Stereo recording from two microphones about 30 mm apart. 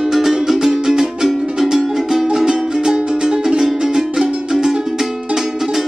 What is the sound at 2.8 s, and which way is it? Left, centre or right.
Music, right.